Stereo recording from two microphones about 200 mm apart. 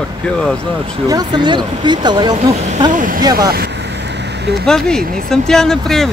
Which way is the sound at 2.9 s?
40° right (ahead or behind).